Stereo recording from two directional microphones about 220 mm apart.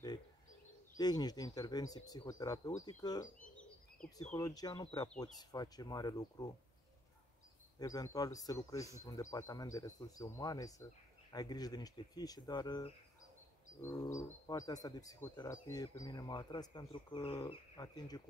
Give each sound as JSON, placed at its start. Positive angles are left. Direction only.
{"t": 0.9, "sound": "speech", "side_deg": 20}
{"t": 7.8, "sound": "speech", "side_deg": 15}
{"t": 13.7, "sound": "wild animals", "side_deg": 10}
{"t": 14.1, "sound": "speech", "side_deg": 15}